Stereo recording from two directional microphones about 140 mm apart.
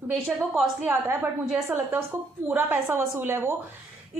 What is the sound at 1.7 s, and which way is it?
A woman's voice, 15° right (ahead or behind).